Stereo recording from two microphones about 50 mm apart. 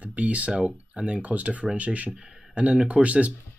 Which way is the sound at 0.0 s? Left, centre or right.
Right.